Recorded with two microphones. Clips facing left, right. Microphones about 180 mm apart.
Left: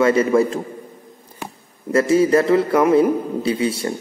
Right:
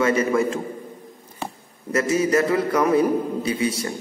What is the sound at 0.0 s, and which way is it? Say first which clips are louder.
Speech: left 4 dB; 25° left (ahead or behind).